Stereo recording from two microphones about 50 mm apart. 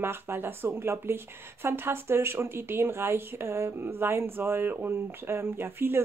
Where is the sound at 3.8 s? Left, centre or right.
Right.